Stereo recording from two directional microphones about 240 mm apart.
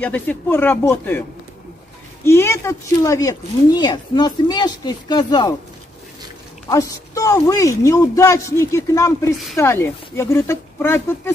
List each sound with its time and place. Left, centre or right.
0.0 s speech: centre
2.2 s speech: centre
6.7 s speech: centre